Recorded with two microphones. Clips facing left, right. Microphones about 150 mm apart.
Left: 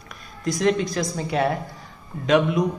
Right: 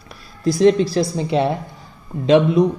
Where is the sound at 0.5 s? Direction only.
30° right (ahead or behind).